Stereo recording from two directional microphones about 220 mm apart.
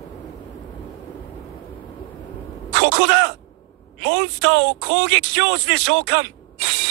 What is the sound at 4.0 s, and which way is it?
Speech, 50° right (ahead or behind).